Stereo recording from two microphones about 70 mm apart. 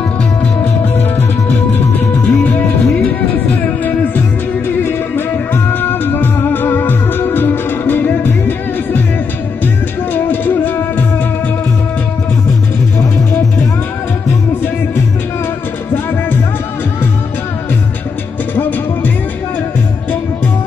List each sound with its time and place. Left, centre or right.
1.5 s music: left
10.1 s music: left
18.5 s music: left